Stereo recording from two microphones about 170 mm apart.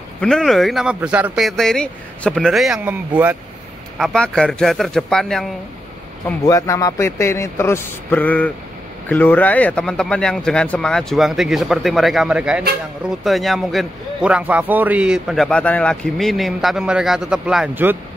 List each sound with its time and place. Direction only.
0.2 s a man's voice: centre (ahead or behind)
4.0 s a man's voice: 5° left (ahead or behind)
6.4 s a man's voice: 20° left (ahead or behind); by 17.9 s 5° right (ahead or behind)